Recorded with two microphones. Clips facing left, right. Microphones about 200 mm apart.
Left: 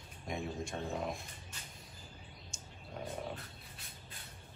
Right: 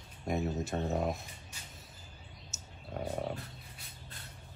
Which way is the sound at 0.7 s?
45° right (ahead or behind).